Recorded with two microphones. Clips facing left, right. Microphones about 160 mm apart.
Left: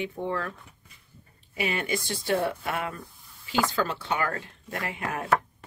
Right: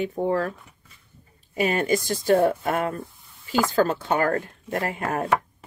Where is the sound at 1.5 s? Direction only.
45° right (ahead or behind).